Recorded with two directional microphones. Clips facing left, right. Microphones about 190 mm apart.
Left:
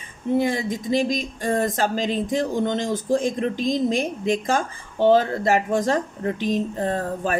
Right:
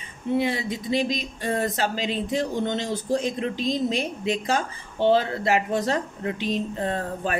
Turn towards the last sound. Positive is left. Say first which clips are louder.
# left 3 dB
turn(degrees=40)  # may be behind; listen again after turning